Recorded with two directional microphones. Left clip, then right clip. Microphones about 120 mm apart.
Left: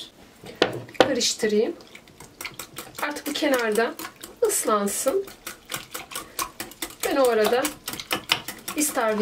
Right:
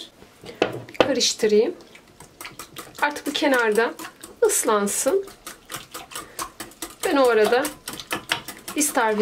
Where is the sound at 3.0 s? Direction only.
30° right (ahead or behind).